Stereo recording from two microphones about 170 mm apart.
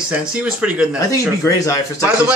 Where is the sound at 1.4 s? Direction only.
20° left (ahead or behind).